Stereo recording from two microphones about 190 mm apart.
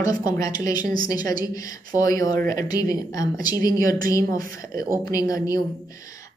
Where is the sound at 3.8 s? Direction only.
45° right (ahead or behind).